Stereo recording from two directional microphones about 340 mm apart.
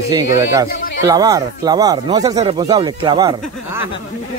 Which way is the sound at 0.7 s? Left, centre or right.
Left.